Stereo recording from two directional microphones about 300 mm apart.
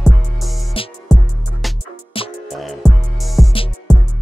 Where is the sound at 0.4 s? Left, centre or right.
Centre.